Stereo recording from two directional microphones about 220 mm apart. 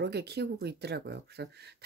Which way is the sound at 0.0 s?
50° right (ahead or behind).